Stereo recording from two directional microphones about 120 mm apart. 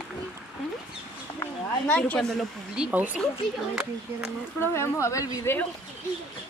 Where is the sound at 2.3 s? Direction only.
5° right (ahead or behind).